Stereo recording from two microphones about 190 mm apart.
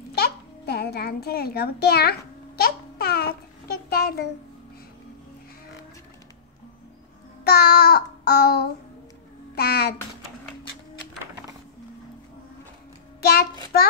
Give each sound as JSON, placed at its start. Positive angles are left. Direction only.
{"t": 0.2, "sound": "babbling", "side_deg": 60}
{"t": 7.4, "sound": "child singing", "side_deg": 55}
{"t": 13.2, "sound": "child singing", "side_deg": 55}